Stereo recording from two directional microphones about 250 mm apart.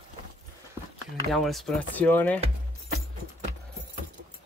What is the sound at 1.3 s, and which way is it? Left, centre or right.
Speech, centre.